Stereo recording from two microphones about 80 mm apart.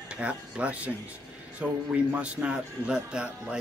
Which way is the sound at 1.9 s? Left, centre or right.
Centre.